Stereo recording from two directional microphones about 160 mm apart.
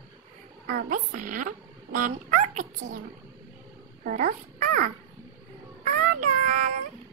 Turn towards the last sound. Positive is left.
turn(degrees=-55)  # may be behind; listen again after turning